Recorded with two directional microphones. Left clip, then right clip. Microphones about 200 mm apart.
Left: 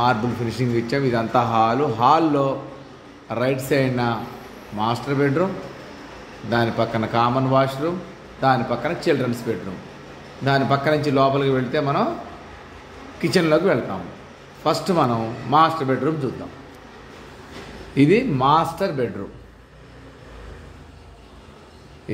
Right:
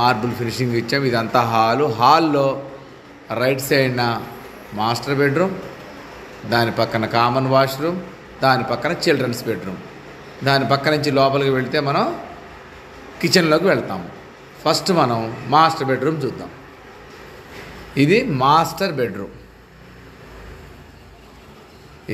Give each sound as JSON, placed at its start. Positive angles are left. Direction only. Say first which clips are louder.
{"t": 0.0, "sound": "a man's voice", "louder": "right 2 dB", "side_deg": 5}
{"t": 6.5, "sound": "a man's voice", "louder": "right 3 dB", "side_deg": 0}
{"t": 13.2, "sound": "a man's voice", "louder": "right 2 dB", "side_deg": 0}
{"t": 17.9, "sound": "a man's voice", "louder": "right 1 dB", "side_deg": 5}